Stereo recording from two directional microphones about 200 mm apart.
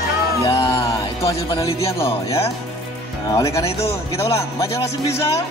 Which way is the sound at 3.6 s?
30° left (ahead or behind).